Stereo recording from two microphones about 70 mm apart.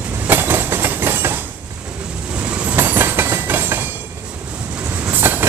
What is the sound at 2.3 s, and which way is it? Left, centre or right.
Train, centre.